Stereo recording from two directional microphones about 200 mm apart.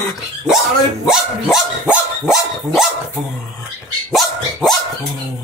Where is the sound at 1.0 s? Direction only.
Centre (ahead or behind).